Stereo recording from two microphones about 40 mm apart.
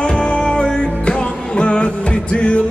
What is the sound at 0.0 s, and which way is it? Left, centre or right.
Music, left.